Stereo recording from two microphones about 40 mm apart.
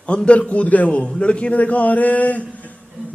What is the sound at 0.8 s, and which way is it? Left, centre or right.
A man's voice, left.